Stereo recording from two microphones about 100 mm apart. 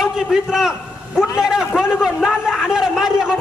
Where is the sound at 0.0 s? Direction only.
5° right (ahead or behind).